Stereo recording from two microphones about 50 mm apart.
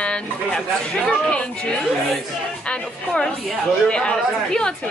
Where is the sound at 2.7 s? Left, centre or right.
Centre.